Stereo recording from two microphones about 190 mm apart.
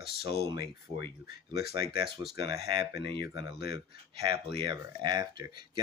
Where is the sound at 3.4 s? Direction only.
60° left (ahead or behind).